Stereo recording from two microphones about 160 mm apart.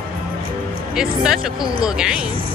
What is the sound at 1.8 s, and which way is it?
Speech, 5° right (ahead or behind).